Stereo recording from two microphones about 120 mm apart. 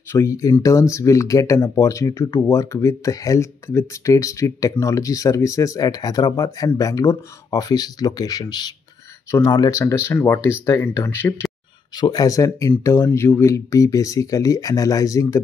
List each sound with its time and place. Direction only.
0.1 s speech: 25° left (ahead or behind)
12.0 s speech: 35° left (ahead or behind)